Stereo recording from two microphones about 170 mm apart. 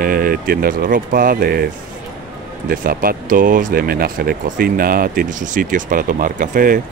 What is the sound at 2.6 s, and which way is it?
Speech, 55° right (ahead or behind).